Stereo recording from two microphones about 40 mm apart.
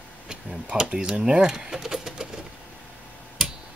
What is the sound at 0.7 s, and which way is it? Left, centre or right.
Speech, centre.